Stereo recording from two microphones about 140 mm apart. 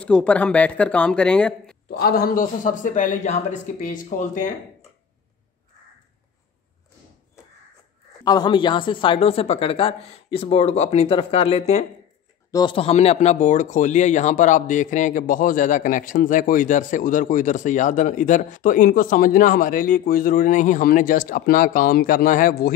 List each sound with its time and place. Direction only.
0.0 s speech: 5° left (ahead or behind)
2.0 s speech: 90° left; by 4.5 s 65° left (ahead or behind)
8.2 s speech: 30° left (ahead or behind); by 11.8 s 50° left (ahead or behind)
12.4 s a sound: 30° left (ahead or behind)
12.7 s speech: 45° left (ahead or behind); by 22.7 s 80° left